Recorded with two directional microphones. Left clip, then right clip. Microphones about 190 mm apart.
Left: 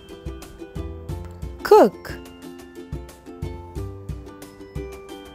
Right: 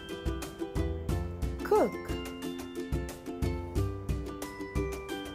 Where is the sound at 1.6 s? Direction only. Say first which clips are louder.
Left 13 dB; 50° left (ahead or behind).